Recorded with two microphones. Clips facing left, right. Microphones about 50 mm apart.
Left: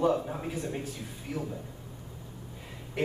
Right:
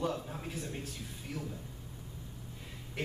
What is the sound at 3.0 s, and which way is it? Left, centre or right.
Speech, centre.